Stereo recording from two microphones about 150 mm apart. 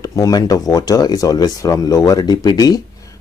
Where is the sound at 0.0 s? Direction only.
25° left (ahead or behind).